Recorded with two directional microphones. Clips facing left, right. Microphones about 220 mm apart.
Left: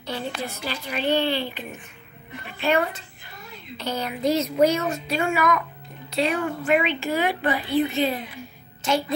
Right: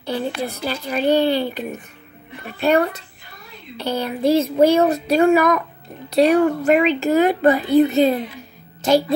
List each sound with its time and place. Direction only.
0.4 s speech: 40° right (ahead or behind)